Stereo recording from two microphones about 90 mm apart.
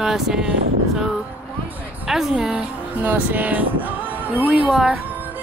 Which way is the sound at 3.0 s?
20° right (ahead or behind).